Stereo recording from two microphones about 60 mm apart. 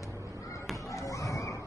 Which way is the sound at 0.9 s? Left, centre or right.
Left.